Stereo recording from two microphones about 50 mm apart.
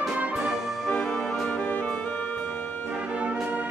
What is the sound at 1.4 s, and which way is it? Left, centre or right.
Music, left.